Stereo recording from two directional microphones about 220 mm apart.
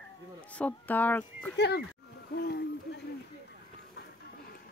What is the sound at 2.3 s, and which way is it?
Hoot, 50° left (ahead or behind).